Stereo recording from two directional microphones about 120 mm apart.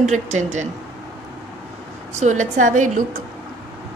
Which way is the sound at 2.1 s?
85° right.